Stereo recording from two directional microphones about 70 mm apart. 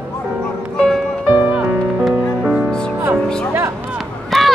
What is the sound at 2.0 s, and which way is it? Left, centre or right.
Music, centre.